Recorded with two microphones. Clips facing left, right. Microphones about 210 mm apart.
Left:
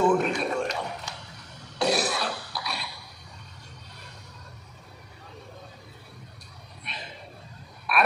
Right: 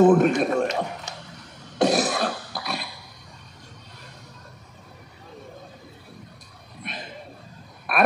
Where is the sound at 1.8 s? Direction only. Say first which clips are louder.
Right 5 dB; 45° right (ahead or behind).